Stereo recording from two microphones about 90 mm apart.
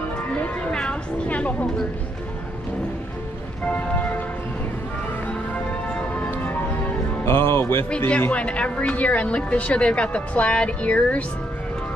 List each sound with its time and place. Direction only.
0.4 s speech: 10° left (ahead or behind)
6.1 s music: 20° left (ahead or behind)
7.2 s speech: 25° left (ahead or behind)
7.9 s a woman's voice: 10° left (ahead or behind)